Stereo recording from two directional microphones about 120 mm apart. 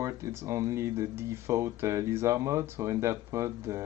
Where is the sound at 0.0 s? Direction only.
25° right (ahead or behind).